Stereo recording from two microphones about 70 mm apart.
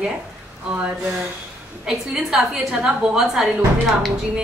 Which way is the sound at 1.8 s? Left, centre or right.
Centre.